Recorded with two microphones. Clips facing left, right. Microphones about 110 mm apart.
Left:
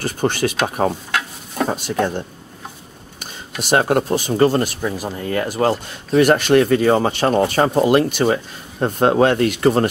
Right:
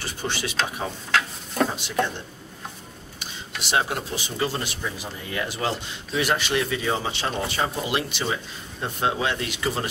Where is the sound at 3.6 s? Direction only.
50° left (ahead or behind).